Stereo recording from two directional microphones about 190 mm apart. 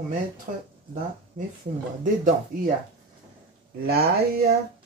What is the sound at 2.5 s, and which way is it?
Speech, 45° right (ahead or behind).